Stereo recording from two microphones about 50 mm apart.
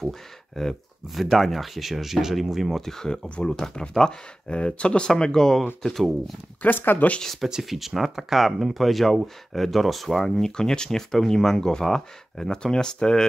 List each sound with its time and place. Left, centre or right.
0.6 s speech: centre
3.3 s speech: left; by 6.3 s centre
6.6 s speech: left
7.3 s speech: centre